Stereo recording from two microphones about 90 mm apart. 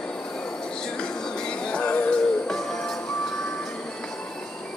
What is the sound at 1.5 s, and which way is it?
Music, 10° left (ahead or behind).